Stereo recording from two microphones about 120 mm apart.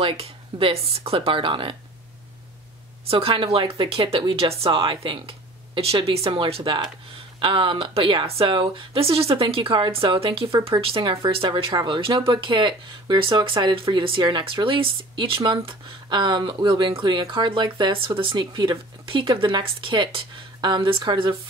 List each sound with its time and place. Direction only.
0.0 s speech: 50° right (ahead or behind)
3.1 s speech: 50° right (ahead or behind)